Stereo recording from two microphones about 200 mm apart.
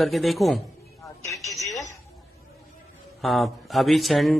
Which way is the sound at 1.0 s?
15° left (ahead or behind).